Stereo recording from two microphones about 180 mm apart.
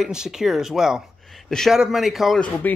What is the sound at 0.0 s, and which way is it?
Speech, 5° right (ahead or behind).